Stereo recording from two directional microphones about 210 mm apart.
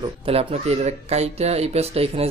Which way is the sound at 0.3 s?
30° right (ahead or behind).